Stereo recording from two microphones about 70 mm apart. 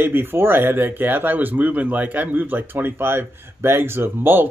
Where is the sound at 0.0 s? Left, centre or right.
Right.